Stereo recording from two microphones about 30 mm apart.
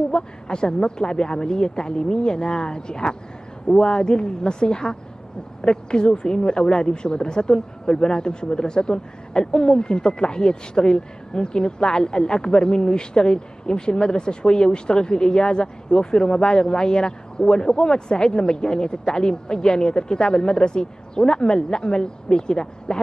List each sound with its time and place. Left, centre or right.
0.1 s a woman's voice: left